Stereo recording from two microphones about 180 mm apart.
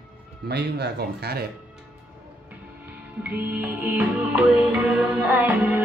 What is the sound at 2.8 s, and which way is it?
Music, 10° right (ahead or behind).